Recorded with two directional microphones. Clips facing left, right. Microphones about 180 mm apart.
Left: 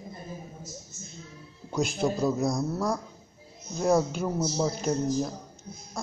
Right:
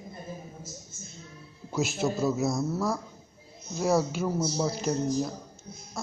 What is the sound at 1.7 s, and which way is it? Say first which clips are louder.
A man's voice: left 1 dB; 5° right (ahead or behind).